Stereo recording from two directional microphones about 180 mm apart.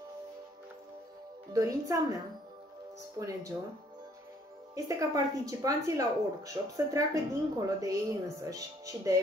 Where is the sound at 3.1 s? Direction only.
20° right (ahead or behind).